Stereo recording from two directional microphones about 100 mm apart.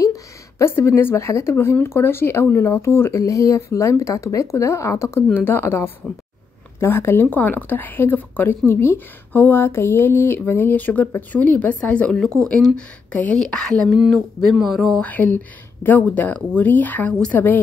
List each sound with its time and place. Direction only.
0.0 s speech: 30° left (ahead or behind); by 15.0 s centre (ahead or behind)
15.0 s speech: 15° left (ahead or behind)